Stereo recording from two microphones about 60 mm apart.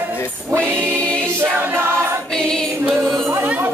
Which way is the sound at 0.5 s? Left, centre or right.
Right.